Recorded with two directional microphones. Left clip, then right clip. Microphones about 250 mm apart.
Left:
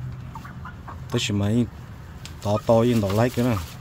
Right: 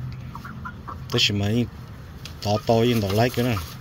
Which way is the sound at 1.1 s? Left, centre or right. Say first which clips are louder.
Right 3 dB; centre.